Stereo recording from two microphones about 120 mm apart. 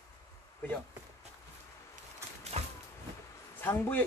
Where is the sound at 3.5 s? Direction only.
15° left (ahead or behind).